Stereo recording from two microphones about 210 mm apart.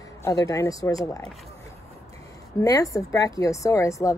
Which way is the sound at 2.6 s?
15° left (ahead or behind).